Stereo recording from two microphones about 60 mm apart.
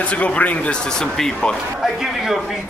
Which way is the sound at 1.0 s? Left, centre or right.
Centre.